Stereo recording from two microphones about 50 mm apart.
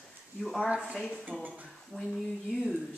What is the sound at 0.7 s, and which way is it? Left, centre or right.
Speech, centre.